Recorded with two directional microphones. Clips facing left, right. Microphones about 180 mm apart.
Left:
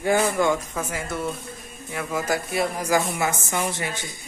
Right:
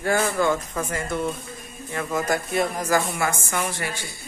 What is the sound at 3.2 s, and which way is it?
A woman's voice, 20° left (ahead or behind).